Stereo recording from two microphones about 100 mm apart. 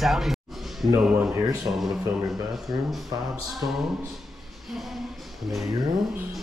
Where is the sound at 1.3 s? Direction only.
35° right (ahead or behind).